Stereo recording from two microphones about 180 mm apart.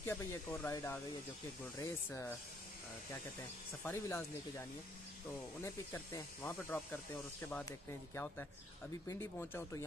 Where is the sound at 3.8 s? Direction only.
15° left (ahead or behind).